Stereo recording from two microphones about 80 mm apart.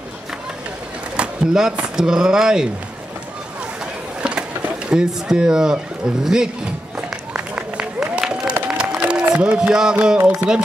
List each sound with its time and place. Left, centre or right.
1.1 s speech: centre
4.2 s a sound: centre
4.8 s speech: centre
7.1 s applause: centre
8.6 s run: centre
9.3 s speech: centre